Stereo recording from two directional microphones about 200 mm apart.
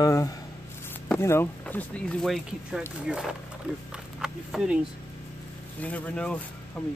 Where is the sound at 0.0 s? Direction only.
15° left (ahead or behind).